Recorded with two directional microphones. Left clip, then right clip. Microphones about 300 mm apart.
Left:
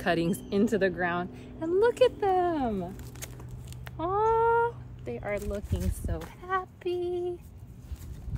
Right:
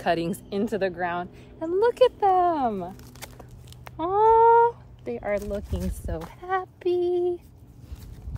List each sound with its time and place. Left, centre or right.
0.0 s a woman's voice: centre
3.8 s cat: right
6.4 s female singing: right